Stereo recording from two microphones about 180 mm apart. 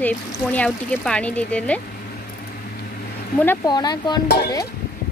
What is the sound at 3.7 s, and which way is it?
Speech, 25° left (ahead or behind).